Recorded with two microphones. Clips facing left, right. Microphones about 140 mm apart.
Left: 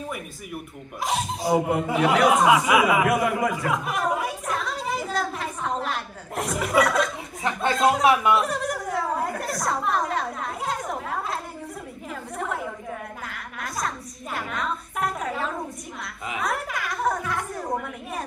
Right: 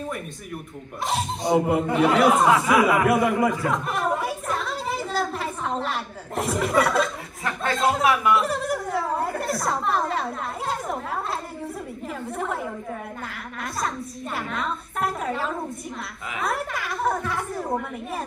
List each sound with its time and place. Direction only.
1.0 s speech: centre (ahead or behind)
8.0 s speech: 25° left (ahead or behind)
8.4 s a woman's voice: centre (ahead or behind)
12.4 s speech: centre (ahead or behind)